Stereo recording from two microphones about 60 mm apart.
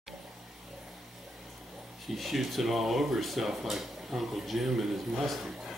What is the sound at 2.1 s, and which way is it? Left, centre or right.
Speech, centre.